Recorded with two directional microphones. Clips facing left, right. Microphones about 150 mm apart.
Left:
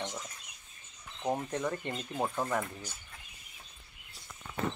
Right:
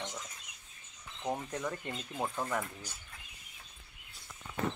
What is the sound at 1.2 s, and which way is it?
Speech, 5° left (ahead or behind).